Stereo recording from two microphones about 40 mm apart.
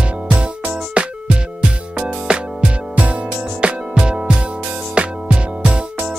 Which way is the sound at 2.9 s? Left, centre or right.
Right.